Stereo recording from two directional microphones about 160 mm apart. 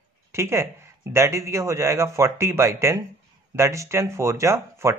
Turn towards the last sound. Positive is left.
turn(degrees=-15)  # may be behind; listen again after turning